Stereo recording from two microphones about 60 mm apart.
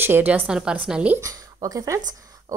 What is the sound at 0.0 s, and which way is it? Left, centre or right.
Speech, right.